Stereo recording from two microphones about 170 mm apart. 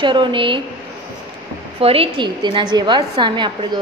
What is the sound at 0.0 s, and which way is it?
Speech, 30° right (ahead or behind).